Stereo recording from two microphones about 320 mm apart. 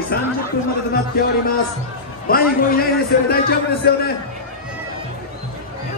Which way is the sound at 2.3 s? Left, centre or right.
Left.